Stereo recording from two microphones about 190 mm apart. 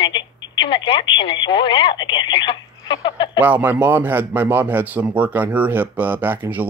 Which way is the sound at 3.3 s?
10° right (ahead or behind).